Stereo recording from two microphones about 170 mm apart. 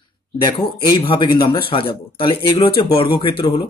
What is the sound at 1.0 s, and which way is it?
A man's voice, 30° left (ahead or behind).